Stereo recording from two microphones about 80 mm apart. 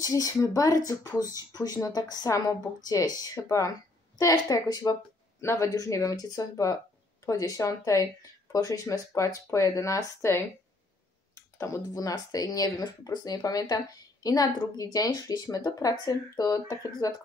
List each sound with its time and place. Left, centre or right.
0.0 s speech: left
5.4 s speech: left